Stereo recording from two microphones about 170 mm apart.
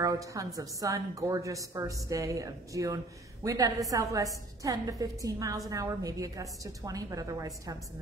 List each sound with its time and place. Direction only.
0.0 s a woman's voice: 20° right (ahead or behind)